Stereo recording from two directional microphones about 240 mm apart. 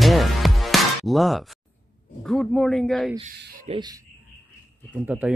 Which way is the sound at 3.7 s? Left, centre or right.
Centre.